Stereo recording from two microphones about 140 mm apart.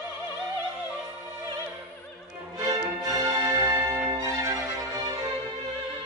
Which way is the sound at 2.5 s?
25° right (ahead or behind).